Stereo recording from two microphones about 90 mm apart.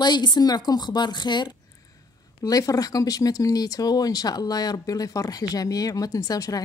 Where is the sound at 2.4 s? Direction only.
40° left (ahead or behind).